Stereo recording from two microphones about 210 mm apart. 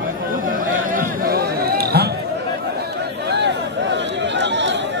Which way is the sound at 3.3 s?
55° right (ahead or behind).